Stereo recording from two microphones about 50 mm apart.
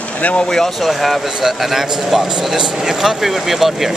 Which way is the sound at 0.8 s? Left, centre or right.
Centre.